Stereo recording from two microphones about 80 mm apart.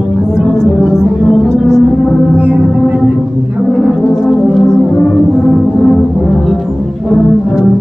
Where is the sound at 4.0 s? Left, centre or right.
Centre.